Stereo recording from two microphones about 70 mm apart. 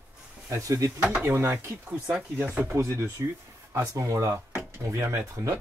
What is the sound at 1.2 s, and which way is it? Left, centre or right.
Speech, right.